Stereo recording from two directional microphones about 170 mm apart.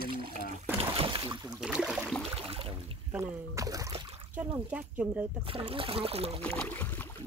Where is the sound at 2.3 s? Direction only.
35° right (ahead or behind).